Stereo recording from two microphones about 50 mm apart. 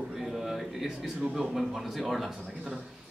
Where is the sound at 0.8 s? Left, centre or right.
Centre.